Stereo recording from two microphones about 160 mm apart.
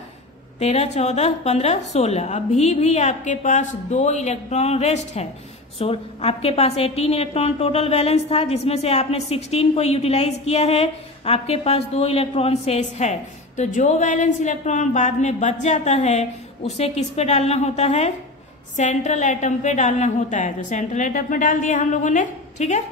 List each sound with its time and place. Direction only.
0.6 s a woman's voice: 40° left (ahead or behind)